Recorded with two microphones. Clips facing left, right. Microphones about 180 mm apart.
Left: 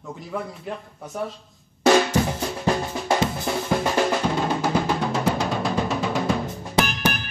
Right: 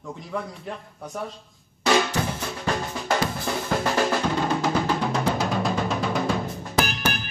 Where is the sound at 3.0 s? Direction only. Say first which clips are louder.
Left 2 dB; 20° left (ahead or behind).